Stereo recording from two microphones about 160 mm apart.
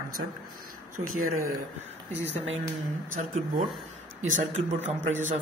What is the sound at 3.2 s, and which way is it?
Speech, 55° right (ahead or behind).